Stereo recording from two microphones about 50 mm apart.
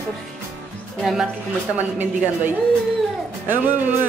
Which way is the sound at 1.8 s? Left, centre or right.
Right.